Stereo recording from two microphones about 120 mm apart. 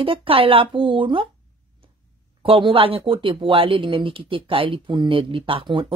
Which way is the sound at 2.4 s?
45° right (ahead or behind).